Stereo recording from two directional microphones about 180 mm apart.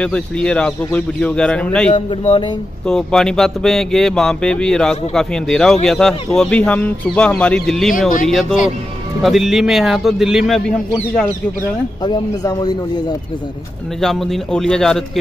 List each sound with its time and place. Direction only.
0.0 s speech: 5° left (ahead or behind)
1.9 s a man's voice: 35° left (ahead or behind)
2.9 s speech: 5° left (ahead or behind)
12.0 s speech: 25° left (ahead or behind)
14.0 s speech: centre (ahead or behind)